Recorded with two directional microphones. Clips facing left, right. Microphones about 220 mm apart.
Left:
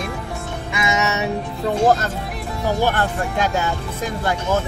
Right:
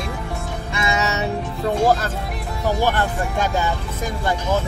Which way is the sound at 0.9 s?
20° left (ahead or behind).